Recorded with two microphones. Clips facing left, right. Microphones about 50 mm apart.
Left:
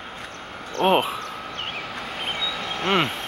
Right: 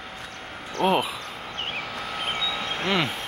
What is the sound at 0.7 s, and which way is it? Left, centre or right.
Speech, left.